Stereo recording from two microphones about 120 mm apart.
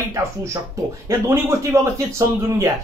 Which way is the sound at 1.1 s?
25° right (ahead or behind).